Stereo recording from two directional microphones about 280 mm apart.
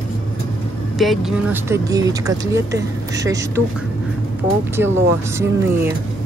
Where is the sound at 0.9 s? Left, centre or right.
Centre.